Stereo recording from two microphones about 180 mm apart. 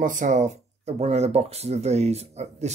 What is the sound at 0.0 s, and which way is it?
Speech, 45° right (ahead or behind).